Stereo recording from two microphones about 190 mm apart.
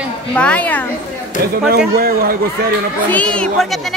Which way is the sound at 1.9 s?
50° right (ahead or behind).